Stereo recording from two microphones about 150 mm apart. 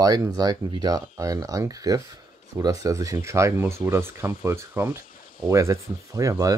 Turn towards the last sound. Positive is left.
turn(degrees=-20)  # may be behind; listen again after turning